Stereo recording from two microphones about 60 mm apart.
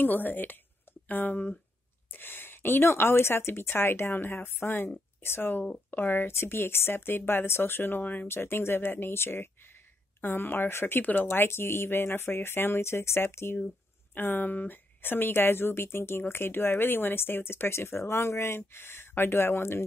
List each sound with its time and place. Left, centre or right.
0.0 s speech: left
8.3 s speech: left